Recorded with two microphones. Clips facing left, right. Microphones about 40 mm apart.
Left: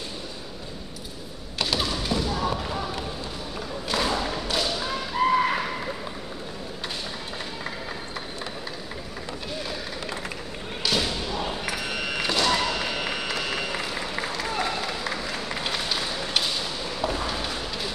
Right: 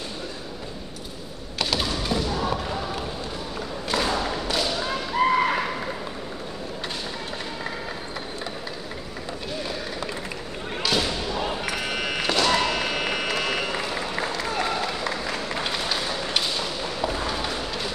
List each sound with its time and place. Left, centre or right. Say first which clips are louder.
1.6 s basketball bounce: right 1 dB; centre
3.9 s thump: right 1 dB; centre
10.8 s basketball bounce: right 1 dB; centre
11.9 s thump: right 2 dB; centre
12.8 s a sound: right 3 dB; right
13.7 s applause: right 2 dB; centre
17.0 s a sound: right 1 dB; centre